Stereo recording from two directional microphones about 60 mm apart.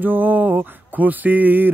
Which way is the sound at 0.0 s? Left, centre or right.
Right.